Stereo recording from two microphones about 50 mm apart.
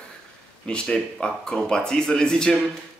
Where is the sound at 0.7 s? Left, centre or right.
Centre.